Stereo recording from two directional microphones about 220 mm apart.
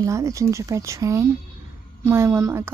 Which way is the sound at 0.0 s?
15° right (ahead or behind).